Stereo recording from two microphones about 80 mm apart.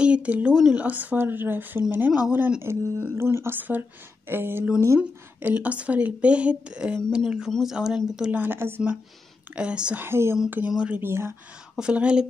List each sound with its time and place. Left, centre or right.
0.0 s speech: centre
2.6 s speech: right
5.4 s speech: centre
8.3 s speech: right
9.6 s speech: centre
9.9 s speech: right
11.7 s speech: centre